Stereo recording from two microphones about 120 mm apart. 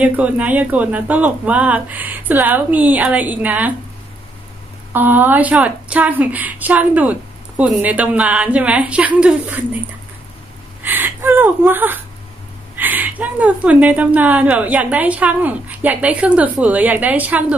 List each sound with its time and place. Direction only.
0.0 s a woman's voice: 10° right (ahead or behind)
4.9 s a woman's voice: 15° right (ahead or behind)